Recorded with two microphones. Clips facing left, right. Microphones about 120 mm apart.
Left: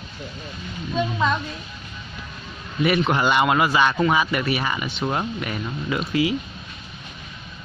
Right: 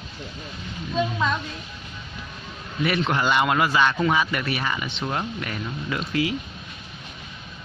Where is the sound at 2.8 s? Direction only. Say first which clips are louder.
Left 3 dB; 15° left (ahead or behind).